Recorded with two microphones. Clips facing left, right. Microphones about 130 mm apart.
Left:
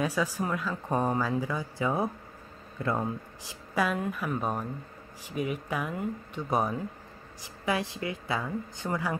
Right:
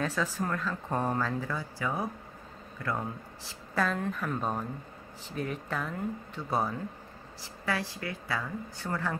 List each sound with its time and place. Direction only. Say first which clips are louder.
0.0 s speech: left 2 dB; 10° left (ahead or behind)
3.7 s speech: left 1 dB; 10° left (ahead or behind)